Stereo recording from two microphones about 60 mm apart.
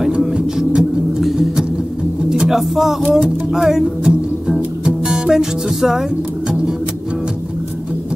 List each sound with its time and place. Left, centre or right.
0.3 s a sound: centre
1.2 s music: centre
3.0 s music: centre
3.5 s music: centre
4.8 s speech: centre